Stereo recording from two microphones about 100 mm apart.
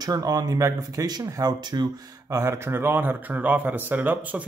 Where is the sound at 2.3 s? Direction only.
25° right (ahead or behind).